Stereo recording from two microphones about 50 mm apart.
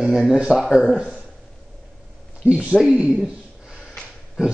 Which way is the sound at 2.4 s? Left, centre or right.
Right.